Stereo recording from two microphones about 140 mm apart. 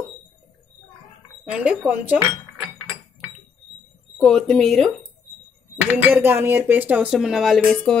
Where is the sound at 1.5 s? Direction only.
10° right (ahead or behind).